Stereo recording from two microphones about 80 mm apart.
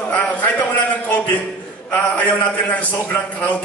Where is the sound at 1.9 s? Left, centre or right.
Centre.